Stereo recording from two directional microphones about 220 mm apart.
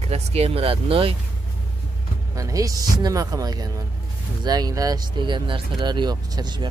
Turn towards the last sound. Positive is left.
turn(degrees=-20)  # may be behind; listen again after turning